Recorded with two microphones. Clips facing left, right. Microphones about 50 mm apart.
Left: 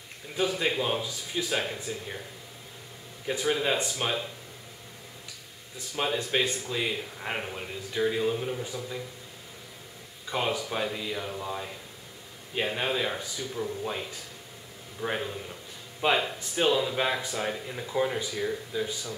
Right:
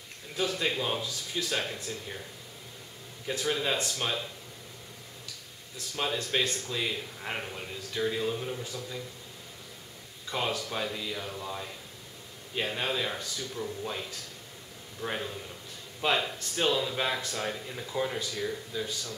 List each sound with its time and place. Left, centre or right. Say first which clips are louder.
0.3 s speech: left 3 dB; centre
3.3 s speech: left 3 dB; centre
5.8 s speech: left 3 dB; centre
10.2 s speech: left 2 dB; centre